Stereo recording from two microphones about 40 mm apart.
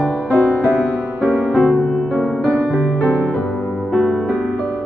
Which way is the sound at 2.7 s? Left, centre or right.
Left.